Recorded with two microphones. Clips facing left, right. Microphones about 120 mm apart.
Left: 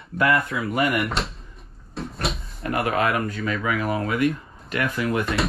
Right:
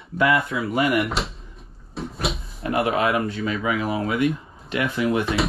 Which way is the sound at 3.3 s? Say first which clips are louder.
Right 1 dB; 25° right (ahead or behind).